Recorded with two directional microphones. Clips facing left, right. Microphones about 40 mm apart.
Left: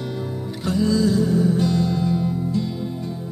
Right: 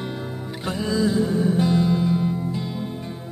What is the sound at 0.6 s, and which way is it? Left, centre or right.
Music, right.